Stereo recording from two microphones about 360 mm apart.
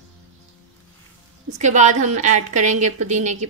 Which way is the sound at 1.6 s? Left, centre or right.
Centre.